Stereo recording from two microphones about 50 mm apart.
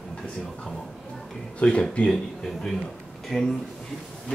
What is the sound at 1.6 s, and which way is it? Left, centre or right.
Speech, left.